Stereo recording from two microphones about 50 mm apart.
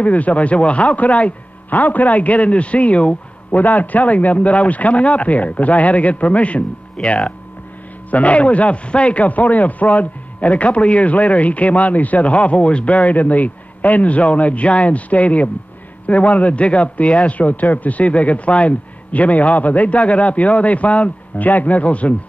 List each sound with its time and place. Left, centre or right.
0.0 s speech: left